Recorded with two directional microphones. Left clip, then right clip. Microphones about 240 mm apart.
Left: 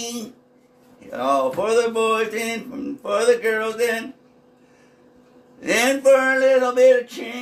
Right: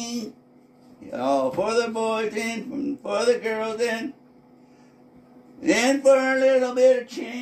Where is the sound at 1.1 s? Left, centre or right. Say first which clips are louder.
Left 3 dB; left.